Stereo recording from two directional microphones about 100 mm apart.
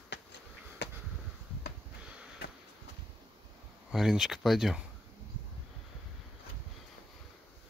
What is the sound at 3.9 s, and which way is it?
Speech, 5° right (ahead or behind).